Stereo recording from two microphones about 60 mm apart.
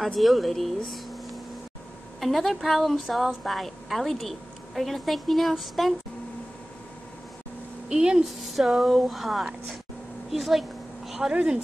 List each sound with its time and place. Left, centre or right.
0.0 s a woman's voice: centre
2.1 s a woman's voice: centre
7.9 s speech: centre
8.4 s a woman's voice: centre
11.1 s a sound: centre
11.3 s speech: centre